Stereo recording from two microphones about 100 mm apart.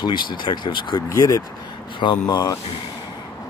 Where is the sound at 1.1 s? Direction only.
35° left (ahead or behind).